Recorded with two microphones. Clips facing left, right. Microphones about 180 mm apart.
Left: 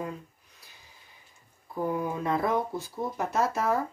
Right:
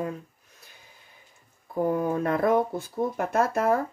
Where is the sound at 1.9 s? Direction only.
55° right (ahead or behind).